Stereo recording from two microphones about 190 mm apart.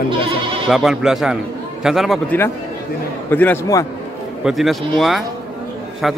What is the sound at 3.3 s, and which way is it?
Speech, 10° left (ahead or behind).